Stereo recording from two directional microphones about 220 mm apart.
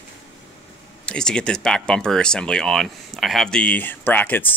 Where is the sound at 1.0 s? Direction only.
5° left (ahead or behind).